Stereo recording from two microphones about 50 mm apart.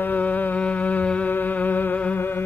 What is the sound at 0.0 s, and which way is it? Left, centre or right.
Music, left.